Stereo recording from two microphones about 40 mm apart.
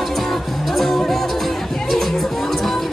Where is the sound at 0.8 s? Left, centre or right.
Centre.